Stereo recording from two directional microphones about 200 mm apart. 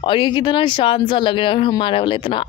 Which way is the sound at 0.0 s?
25° left (ahead or behind).